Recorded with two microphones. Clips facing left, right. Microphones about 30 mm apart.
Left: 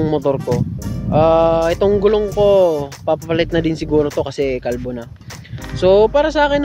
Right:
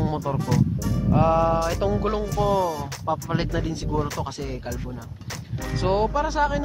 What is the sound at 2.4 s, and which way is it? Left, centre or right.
Speech, left.